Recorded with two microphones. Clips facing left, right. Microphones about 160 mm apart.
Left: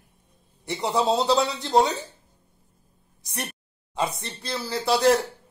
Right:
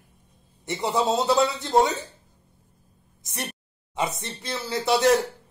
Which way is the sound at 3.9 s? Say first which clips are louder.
Even; 20° right (ahead or behind).